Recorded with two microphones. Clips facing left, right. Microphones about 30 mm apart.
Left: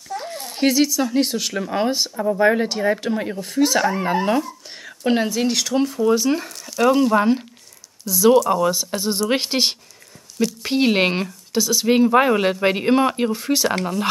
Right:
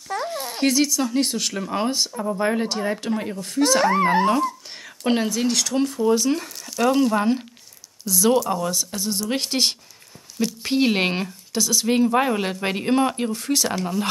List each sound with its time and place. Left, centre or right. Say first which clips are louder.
0.2 s a sound: right 4 dB; centre
0.6 s speech: left 3 dB; centre
8.6 s speech: left 5 dB; left